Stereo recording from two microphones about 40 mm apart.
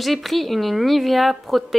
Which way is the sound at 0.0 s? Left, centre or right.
Centre.